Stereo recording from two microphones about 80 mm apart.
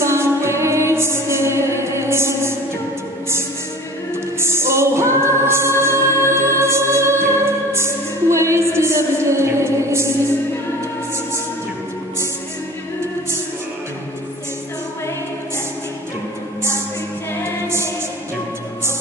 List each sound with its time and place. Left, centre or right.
0.0 s music: right
4.4 s music: right
17.6 s music: right